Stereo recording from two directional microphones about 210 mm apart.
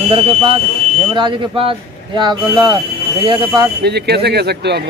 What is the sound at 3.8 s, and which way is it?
A man's voice, 50° right (ahead or behind).